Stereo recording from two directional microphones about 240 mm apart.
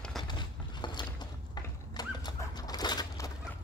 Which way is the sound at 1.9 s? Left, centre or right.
Centre.